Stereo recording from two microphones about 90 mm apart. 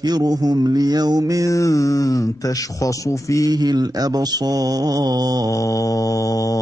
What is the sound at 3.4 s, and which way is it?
Mantra, 50° right (ahead or behind).